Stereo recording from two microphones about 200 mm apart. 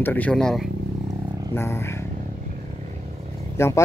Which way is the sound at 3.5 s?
15° left (ahead or behind).